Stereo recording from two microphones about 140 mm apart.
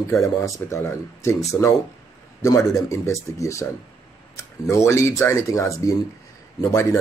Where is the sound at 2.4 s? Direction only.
20° left (ahead or behind).